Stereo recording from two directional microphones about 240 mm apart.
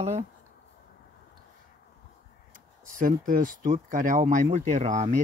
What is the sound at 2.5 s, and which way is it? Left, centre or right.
Speech, right.